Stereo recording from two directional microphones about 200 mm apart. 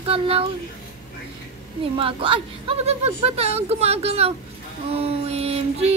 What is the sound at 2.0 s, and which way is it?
Speech, 25° right (ahead or behind).